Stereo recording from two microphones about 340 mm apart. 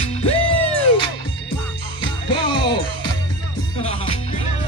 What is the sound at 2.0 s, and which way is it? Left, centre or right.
Music, centre.